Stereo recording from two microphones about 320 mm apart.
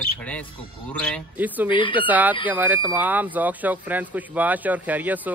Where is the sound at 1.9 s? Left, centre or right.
Centre.